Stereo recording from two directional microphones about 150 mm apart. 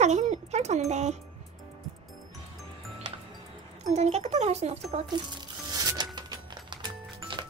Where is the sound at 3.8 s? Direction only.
45° right (ahead or behind).